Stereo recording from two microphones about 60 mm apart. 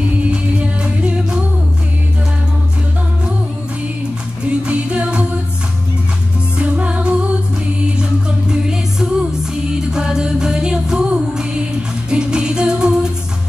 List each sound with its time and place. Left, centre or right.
0.2 s music: centre
4.5 s music: centre
6.6 s music: right